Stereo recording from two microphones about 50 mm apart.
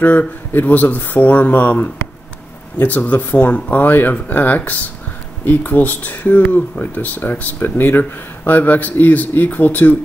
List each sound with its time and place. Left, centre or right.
0.0 s speech: left